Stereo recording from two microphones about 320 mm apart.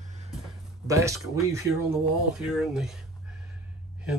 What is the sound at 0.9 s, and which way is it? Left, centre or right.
Speech, centre.